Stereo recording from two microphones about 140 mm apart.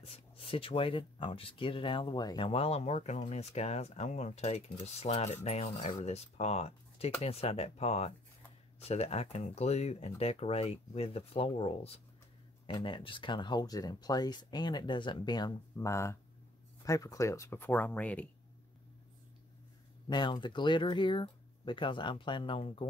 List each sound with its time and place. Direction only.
0.0 s speech: 45° left (ahead or behind); by 18.3 s 10° left (ahead or behind)
20.1 s speech: 30° left (ahead or behind)